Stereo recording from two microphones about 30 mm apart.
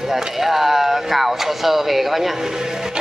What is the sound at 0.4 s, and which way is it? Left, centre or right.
Speech, centre.